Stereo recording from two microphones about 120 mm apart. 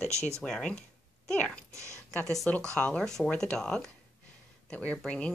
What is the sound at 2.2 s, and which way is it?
Speech, centre (ahead or behind).